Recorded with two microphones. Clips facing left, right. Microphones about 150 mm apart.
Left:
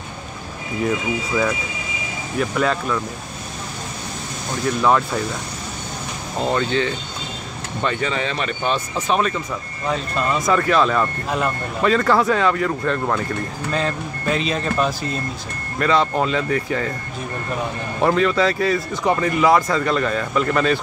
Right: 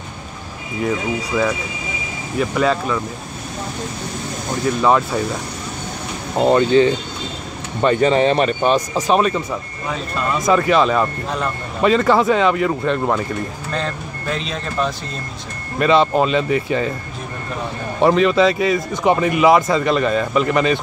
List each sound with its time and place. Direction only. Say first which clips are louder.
0.8 s speech: right 1 dB; centre (ahead or behind)
2.5 s speech: right 3 dB; centre (ahead or behind)
6.4 s speech: right 8 dB; 30° right (ahead or behind)
10.4 s speech: right 4 dB; 15° right (ahead or behind)
13.7 s speech: left 1 dB; 5° left (ahead or behind)
15.8 s speech: right 4 dB; 20° right (ahead or behind)
18.0 s speech: right 4 dB; 20° right (ahead or behind)